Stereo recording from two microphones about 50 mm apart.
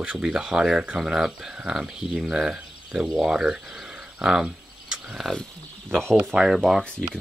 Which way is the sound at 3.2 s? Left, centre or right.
Centre.